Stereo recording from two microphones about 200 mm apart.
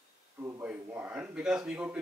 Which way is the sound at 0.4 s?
10° right (ahead or behind).